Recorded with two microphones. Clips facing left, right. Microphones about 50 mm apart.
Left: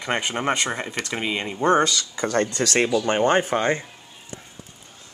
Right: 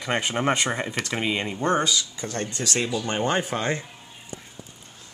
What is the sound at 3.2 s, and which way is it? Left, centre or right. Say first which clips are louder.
Speech: left 4 dB; left.